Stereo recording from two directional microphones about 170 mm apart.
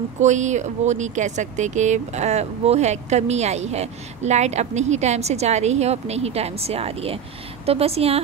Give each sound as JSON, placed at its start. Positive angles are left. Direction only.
{"t": 0.2, "sound": "speech", "side_deg": -45}